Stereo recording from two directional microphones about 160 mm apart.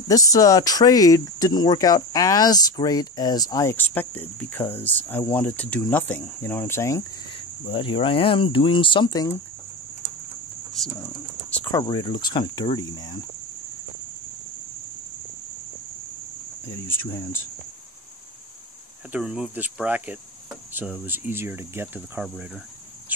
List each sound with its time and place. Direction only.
0.1 s speech: 20° left (ahead or behind)
7.3 s speech: 35° left (ahead or behind)
11.7 s speech: 25° left (ahead or behind)
16.7 s speech: 15° left (ahead or behind)
19.1 s speech: 5° right (ahead or behind)
22.2 s speech: 5° right (ahead or behind)